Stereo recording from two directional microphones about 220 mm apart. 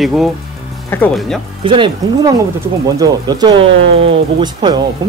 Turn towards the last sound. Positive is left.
turn(degrees=-20)  # may be behind; listen again after turning